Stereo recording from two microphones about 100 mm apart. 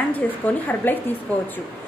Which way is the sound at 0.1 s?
15° left (ahead or behind).